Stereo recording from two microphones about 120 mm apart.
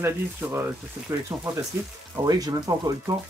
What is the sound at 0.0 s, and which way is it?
Speech, 20° right (ahead or behind).